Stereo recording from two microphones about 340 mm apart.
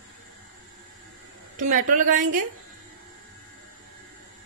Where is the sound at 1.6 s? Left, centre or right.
Right.